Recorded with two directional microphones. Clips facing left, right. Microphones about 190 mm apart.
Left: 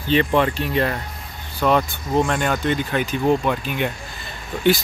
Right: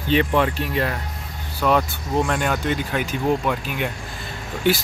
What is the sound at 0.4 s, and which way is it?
Speech, 5° right (ahead or behind).